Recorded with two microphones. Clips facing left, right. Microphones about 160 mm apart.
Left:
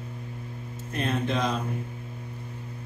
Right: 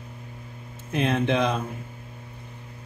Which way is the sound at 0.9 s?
85° right.